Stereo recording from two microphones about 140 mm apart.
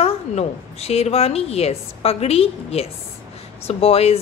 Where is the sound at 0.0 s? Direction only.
50° left (ahead or behind).